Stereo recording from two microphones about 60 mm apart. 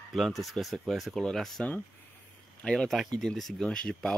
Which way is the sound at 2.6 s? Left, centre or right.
Centre.